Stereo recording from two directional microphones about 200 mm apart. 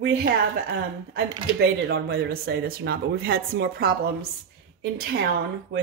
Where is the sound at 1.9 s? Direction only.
50° right (ahead or behind).